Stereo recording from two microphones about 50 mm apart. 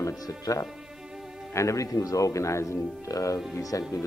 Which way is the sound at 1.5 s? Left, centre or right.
Left.